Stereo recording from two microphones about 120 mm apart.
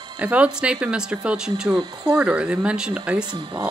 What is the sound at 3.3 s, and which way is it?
Speech, 40° right (ahead or behind).